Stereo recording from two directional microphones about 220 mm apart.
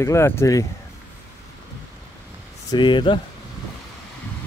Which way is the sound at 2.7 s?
20° left (ahead or behind).